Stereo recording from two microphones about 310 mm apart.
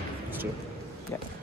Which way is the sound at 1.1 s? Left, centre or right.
Centre.